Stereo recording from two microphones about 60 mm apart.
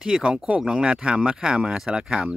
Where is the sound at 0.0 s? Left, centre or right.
Centre.